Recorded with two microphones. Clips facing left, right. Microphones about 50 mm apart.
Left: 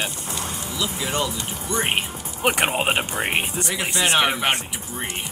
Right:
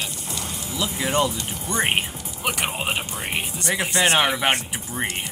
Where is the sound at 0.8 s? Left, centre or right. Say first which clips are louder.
Right 3 dB; centre.